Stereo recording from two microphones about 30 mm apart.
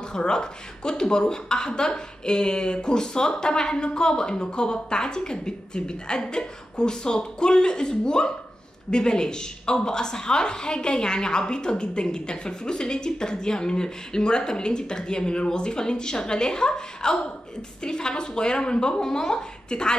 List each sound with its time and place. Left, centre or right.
0.1 s a woman's voice: left